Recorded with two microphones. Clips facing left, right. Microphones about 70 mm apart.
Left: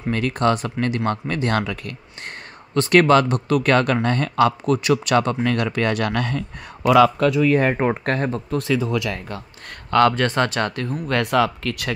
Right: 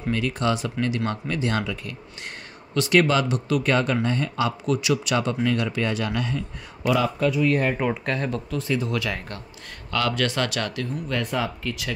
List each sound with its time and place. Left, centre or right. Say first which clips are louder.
0.1 s speech: left 4 dB; left
6.9 s speech: left 7 dB; left
7.7 s speech: left 4 dB; left
8.0 s speech: left 4 dB; left
9.8 s speech: left 8 dB; left
11.1 s speech: left 9 dB; left